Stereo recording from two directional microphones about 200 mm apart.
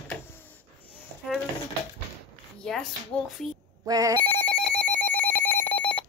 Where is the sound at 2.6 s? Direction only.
Centre (ahead or behind).